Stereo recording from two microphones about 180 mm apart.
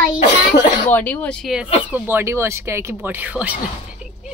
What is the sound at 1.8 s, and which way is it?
Speech, 10° right (ahead or behind).